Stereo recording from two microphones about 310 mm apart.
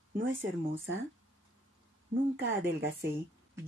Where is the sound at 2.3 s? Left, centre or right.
Right.